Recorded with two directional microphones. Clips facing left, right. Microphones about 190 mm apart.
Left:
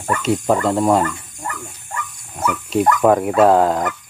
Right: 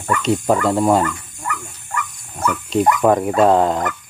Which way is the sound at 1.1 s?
30° left (ahead or behind).